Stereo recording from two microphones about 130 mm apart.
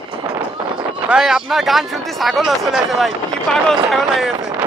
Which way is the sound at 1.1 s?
5° right (ahead or behind).